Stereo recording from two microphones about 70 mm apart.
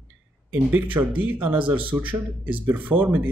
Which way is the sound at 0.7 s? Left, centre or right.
Right.